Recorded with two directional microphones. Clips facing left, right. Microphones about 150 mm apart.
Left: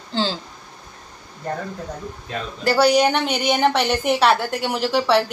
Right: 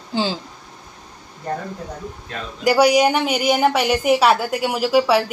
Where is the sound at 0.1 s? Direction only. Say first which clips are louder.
Right 1 dB; 10° right (ahead or behind).